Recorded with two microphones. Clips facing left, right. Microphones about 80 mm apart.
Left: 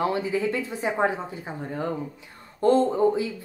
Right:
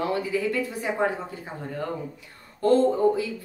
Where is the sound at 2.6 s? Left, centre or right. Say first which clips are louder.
Even; left.